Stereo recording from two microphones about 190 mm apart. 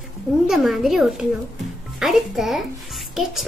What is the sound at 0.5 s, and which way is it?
A child's voice, centre (ahead or behind).